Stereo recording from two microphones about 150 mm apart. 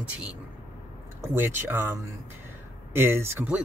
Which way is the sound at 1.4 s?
15° right (ahead or behind).